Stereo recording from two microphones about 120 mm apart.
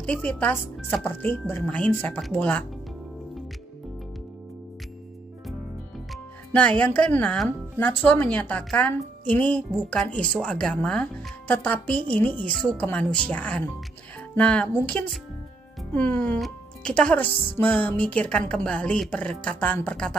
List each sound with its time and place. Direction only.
0.0 s speech: 10° left (ahead or behind)
6.5 s speech: 10° left (ahead or behind)